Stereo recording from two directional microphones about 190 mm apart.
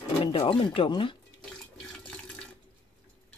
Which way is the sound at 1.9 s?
5° left (ahead or behind).